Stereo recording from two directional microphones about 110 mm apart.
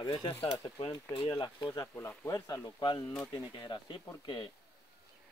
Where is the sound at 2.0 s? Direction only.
25° left (ahead or behind); by 4.5 s 45° left (ahead or behind).